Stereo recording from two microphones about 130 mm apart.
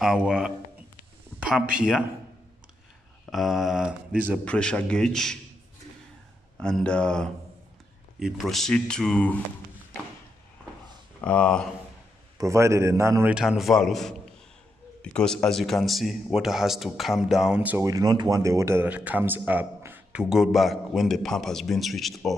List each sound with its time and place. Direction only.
0.0 s speech: 5° right (ahead or behind)
3.3 s speech: centre (ahead or behind)
4.5 s a man's voice: 10° left (ahead or behind)
6.6 s a man's voice: 5° left (ahead or behind)
11.2 s a man's voice: 10° left (ahead or behind)
12.4 s a man's voice: 25° right (ahead or behind)
13.3 s speech: 5° right (ahead or behind)
17.8 s speech: 30° right (ahead or behind); by 22.3 s centre (ahead or behind)